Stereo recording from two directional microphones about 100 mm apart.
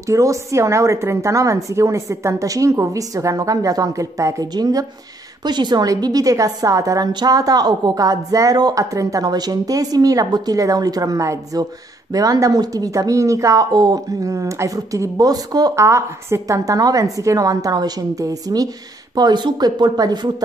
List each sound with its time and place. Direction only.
0.1 s a woman's voice: 30° right (ahead or behind)
15.8 s a woman's voice: 30° right (ahead or behind)